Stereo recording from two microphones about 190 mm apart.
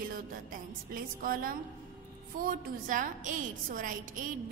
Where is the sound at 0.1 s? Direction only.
50° right (ahead or behind).